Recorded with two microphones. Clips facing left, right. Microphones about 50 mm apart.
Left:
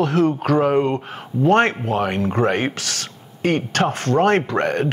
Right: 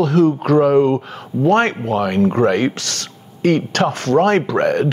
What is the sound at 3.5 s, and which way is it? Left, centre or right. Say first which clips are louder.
Speech: right 2 dB; left.